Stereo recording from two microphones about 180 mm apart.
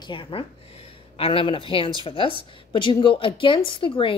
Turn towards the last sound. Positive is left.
turn(degrees=30)  # may be behind; listen again after turning